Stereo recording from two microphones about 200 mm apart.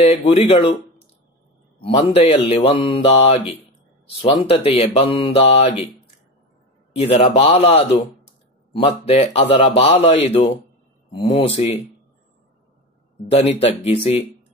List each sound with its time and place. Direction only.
0.0 s a man's voice: 30° left (ahead or behind)
1.8 s a man's voice: 30° left (ahead or behind)
7.0 s a man's voice: 30° left (ahead or behind)
13.3 s a man's voice: 30° left (ahead or behind)